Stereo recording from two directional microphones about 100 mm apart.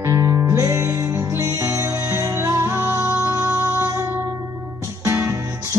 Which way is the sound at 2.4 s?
30° right (ahead or behind).